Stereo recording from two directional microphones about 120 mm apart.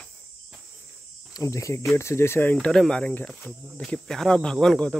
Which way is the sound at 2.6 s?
5° left (ahead or behind).